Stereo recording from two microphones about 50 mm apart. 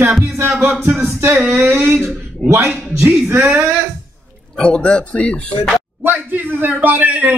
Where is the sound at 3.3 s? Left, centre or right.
Right.